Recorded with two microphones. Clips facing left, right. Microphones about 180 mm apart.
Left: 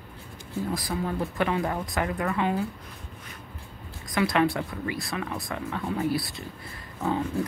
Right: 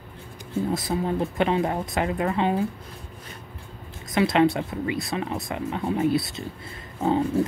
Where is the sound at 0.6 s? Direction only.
25° right (ahead or behind).